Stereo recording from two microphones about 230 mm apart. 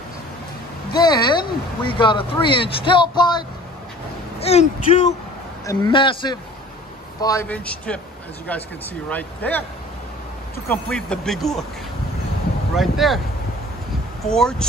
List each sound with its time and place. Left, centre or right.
0.9 s speech: centre
9.1 s speech: centre
10.7 s speech: centre
12.7 s speech: centre
14.2 s speech: centre